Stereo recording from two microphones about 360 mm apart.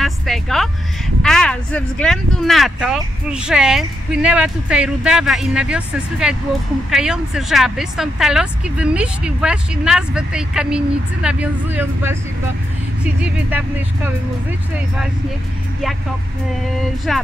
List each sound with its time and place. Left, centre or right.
0.0 s speech: centre
17.1 s speech: centre